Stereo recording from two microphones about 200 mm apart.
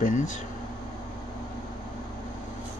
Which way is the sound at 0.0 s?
40° left (ahead or behind).